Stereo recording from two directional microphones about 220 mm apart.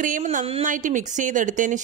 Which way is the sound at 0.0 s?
35° right (ahead or behind).